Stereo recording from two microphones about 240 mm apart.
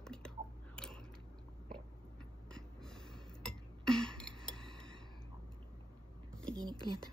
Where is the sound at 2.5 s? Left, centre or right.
Centre.